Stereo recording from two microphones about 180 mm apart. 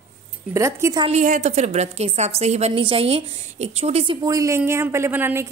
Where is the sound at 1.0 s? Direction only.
45° right (ahead or behind).